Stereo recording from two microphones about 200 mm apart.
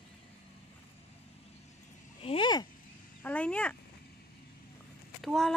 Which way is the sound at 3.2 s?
5° left (ahead or behind).